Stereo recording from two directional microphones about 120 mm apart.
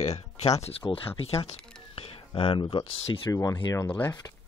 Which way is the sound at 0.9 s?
50° left (ahead or behind).